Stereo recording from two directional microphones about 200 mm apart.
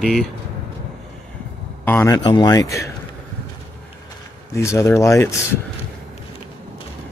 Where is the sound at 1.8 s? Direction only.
15° left (ahead or behind).